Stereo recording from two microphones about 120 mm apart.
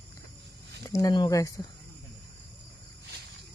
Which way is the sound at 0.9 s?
30° left (ahead or behind).